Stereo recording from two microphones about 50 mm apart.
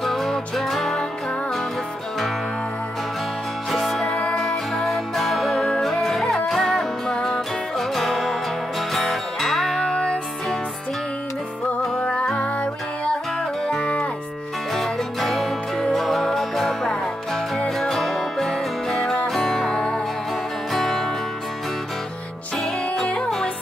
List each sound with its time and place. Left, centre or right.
0.0 s music: centre
3.7 s music: centre
4.1 s music: left
4.7 s music: centre
12.0 s music: left
13.1 s music: centre
14.7 s music: centre
20.7 s music: centre
22.9 s music: left
23.2 s music: centre